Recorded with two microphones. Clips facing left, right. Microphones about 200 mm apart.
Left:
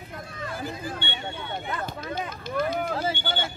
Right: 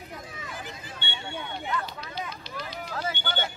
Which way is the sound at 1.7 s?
50° left (ahead or behind).